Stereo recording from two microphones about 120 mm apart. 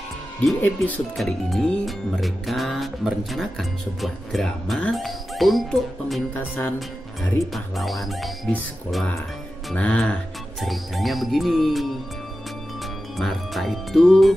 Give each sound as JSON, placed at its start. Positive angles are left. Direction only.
{"t": 0.6, "sound": "speech", "side_deg": 15}
{"t": 1.1, "sound": "music", "side_deg": 0}
{"t": 6.3, "sound": "speech", "side_deg": 15}
{"t": 7.5, "sound": "music", "side_deg": 0}
{"t": 9.8, "sound": "speech", "side_deg": 10}
{"t": 10.6, "sound": "music", "side_deg": 0}
{"t": 13.2, "sound": "music", "side_deg": 0}